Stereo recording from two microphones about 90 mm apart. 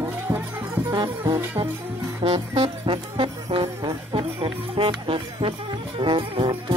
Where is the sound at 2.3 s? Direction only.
85° right.